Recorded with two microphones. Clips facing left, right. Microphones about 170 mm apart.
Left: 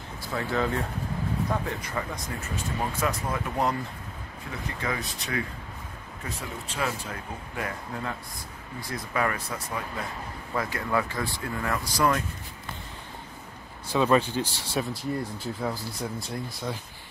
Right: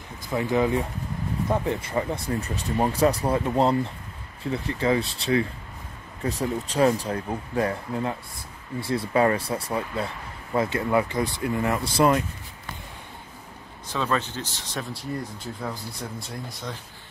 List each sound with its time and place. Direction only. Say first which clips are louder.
0.3 s speech: right 5 dB; 15° right (ahead or behind)
13.9 s speech: left 4 dB; 10° left (ahead or behind)